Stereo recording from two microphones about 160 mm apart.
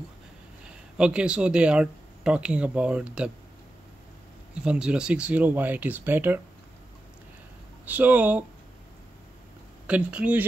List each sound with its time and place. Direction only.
0.9 s speech: 5° right (ahead or behind)
4.6 s speech: 5° right (ahead or behind)
7.8 s speech: 10° right (ahead or behind)
9.8 s speech: 10° right (ahead or behind)